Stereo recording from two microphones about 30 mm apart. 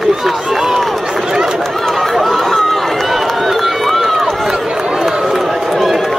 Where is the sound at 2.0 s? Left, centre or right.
Centre.